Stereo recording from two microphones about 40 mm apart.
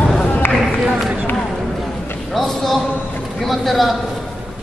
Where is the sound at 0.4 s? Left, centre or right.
Left.